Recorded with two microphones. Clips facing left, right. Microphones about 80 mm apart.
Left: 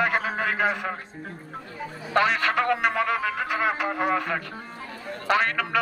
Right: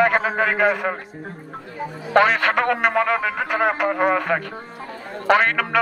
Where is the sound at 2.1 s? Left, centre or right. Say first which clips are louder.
Right 6 dB; right.